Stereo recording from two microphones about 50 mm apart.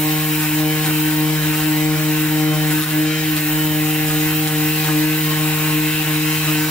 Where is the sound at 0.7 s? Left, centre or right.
Left.